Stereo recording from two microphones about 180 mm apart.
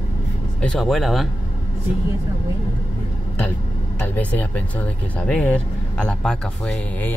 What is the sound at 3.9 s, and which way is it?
Speech, 10° left (ahead or behind).